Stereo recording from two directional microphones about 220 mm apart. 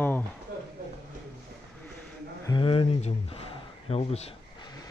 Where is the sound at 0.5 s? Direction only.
45° right (ahead or behind).